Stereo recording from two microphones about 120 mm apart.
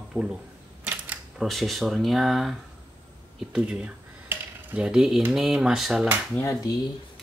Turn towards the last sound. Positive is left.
turn(degrees=30)  # may be behind; listen again after turning